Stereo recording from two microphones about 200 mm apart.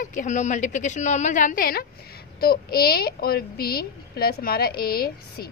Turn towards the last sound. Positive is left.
turn(degrees=50)  # may be behind; listen again after turning